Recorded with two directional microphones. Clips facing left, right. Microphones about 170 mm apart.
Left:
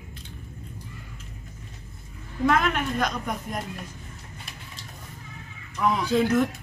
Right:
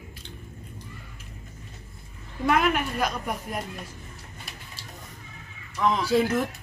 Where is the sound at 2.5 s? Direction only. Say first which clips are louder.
Right 1 dB; 10° right (ahead or behind).